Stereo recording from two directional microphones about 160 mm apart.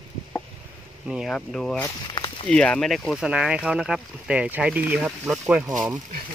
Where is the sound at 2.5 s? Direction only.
5° left (ahead or behind).